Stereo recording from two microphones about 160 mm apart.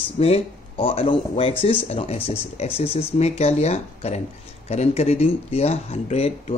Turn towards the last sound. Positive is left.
turn(degrees=40)  # may be behind; listen again after turning